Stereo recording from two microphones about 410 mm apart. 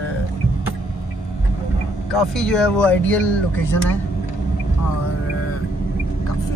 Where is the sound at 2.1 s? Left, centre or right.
Centre.